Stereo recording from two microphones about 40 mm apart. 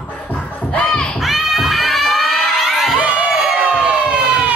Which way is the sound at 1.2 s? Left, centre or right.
Centre.